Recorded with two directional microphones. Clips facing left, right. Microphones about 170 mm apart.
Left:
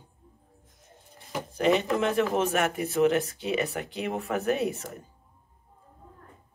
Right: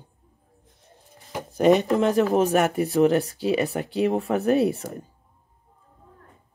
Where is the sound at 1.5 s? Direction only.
40° right (ahead or behind).